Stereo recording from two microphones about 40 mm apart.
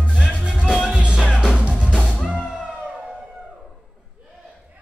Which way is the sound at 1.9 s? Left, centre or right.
Left.